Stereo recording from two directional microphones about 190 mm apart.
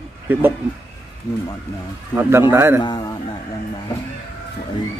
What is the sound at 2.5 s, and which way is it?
Speech, 10° right (ahead or behind).